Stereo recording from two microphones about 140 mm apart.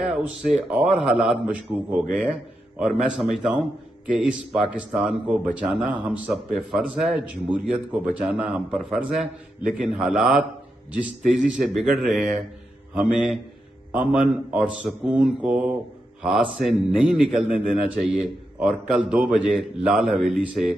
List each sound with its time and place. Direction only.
0.0 s a man's voice: centre (ahead or behind)